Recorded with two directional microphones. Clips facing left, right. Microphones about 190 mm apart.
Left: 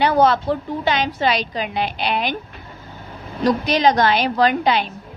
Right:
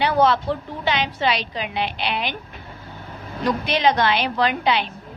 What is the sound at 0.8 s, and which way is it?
A woman's voice, 45° left (ahead or behind).